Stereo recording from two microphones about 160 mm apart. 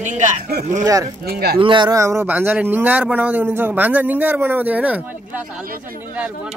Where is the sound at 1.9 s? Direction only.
15° right (ahead or behind).